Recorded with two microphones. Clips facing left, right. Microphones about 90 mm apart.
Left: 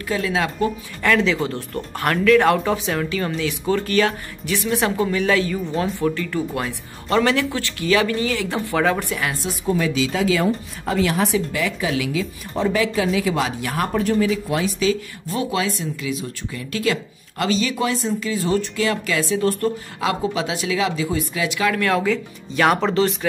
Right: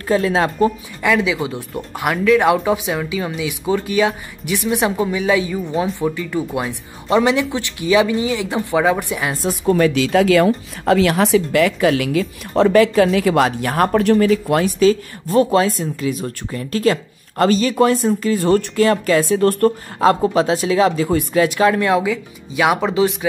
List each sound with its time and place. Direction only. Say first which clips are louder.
0.1 s speech: right 6 dB; 35° right (ahead or behind)
1.0 s speech: right 1 dB; 10° right (ahead or behind)
9.5 s a woman's voice: right 8 dB; 60° right (ahead or behind)
11.9 s a woman's voice: right 5 dB; 55° right (ahead or behind)
14.3 s speech: right 6 dB; 50° right (ahead or behind)
18.9 s speech: right 7 dB; 45° right (ahead or behind)
20.1 s speech: right 8 dB; 40° right (ahead or behind)
21.6 s speech: right 4 dB; 20° right (ahead or behind)
22.1 s speech: even; 10° right (ahead or behind)